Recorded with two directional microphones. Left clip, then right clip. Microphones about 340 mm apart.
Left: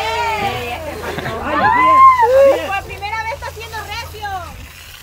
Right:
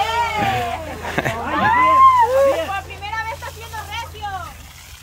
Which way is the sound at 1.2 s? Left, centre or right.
Centre.